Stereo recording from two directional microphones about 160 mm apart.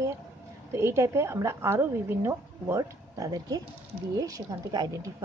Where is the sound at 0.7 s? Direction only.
15° right (ahead or behind).